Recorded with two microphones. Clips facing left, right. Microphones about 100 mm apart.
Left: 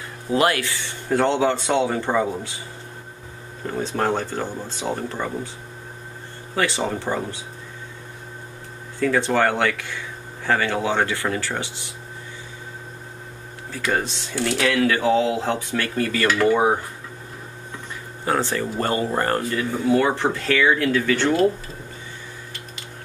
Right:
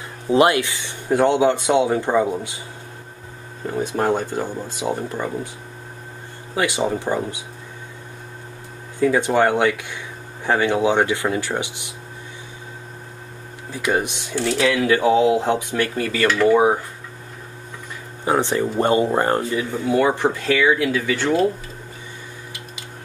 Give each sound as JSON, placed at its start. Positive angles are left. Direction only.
{"t": 0.3, "sound": "speech", "side_deg": -20}
{"t": 3.7, "sound": "speech", "side_deg": -15}
{"t": 6.5, "sound": "speech", "side_deg": -15}
{"t": 9.0, "sound": "speech", "side_deg": -15}
{"t": 13.7, "sound": "speech", "side_deg": -15}
{"t": 18.2, "sound": "speech", "side_deg": -20}